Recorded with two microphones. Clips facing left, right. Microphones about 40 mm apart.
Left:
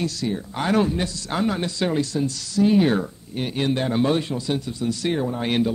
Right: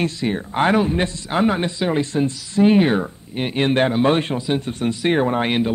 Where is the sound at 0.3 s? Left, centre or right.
Right.